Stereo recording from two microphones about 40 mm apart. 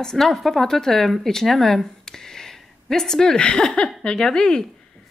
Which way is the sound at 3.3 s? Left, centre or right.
Left.